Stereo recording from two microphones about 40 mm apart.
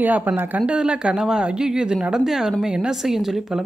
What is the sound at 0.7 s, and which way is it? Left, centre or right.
Speech, right.